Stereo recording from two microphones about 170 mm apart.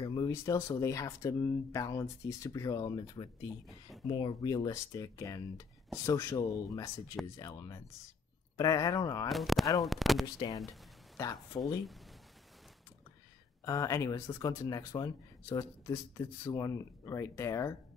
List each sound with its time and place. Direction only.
0.0 s speech: 20° left (ahead or behind)
9.3 s speech: centre (ahead or behind)
10.2 s speech: 25° left (ahead or behind)
11.6 s speech: centre (ahead or behind)
13.7 s speech: 20° left (ahead or behind)